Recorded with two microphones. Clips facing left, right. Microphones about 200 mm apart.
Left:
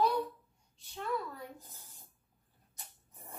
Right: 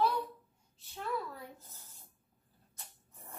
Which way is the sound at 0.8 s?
Centre (ahead or behind).